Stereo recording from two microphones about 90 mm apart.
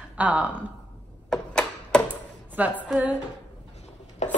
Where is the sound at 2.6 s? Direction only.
20° right (ahead or behind).